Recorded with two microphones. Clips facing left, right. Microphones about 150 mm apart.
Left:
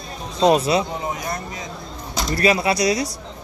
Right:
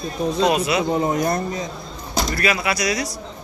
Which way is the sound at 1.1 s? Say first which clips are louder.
Right 8 dB; 40° right (ahead or behind).